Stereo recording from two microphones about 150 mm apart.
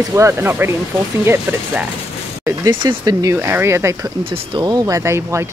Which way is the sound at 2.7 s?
30° right (ahead or behind).